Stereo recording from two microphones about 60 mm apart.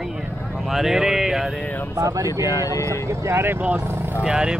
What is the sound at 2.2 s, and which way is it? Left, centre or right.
Speech, left.